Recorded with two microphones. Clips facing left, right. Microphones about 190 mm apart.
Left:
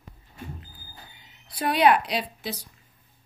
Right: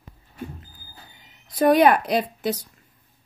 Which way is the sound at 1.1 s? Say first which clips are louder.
Right 10 dB; 45° right (ahead or behind).